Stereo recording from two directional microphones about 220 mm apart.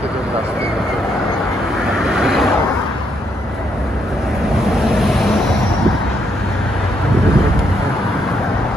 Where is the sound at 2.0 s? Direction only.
Centre (ahead or behind).